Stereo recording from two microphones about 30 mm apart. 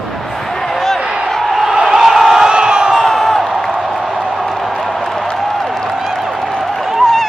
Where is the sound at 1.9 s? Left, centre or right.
Centre.